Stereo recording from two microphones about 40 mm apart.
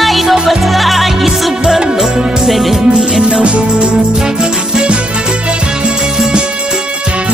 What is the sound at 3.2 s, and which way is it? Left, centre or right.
Music, right.